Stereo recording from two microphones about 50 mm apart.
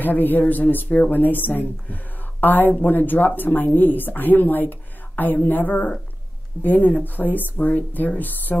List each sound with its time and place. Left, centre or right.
0.0 s speech: left